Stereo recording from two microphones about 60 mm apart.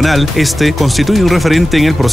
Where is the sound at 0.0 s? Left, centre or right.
Centre.